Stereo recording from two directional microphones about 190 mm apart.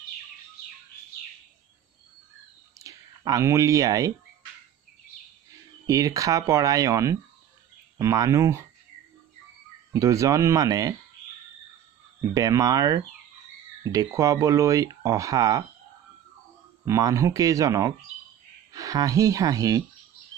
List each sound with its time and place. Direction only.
2.8 s speech: 20° right (ahead or behind)
5.9 s speech: 15° right (ahead or behind)
9.9 s speech: 15° right (ahead or behind)
12.2 s speech: 20° right (ahead or behind)
16.8 s speech: 15° right (ahead or behind)